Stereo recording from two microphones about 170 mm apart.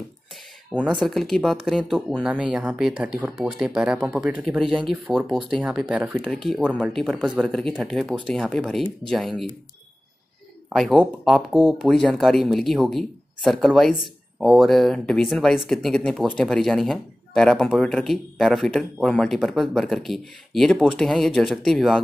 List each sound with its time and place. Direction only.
0.7 s speech: centre (ahead or behind)
10.7 s speech: centre (ahead or behind)